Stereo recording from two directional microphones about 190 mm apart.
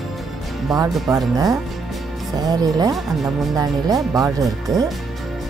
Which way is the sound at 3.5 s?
20° right (ahead or behind).